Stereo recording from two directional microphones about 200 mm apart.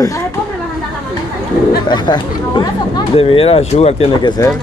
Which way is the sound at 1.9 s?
20° left (ahead or behind).